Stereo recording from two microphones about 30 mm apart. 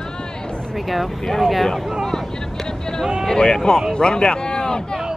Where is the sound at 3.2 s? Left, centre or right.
Left.